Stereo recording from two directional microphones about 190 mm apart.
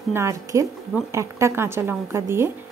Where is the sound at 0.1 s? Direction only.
15° right (ahead or behind).